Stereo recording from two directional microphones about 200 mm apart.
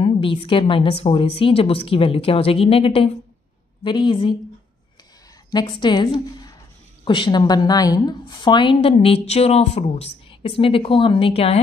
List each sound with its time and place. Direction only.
0.0 s a woman's voice: 30° left (ahead or behind)
5.5 s a woman's voice: 20° left (ahead or behind)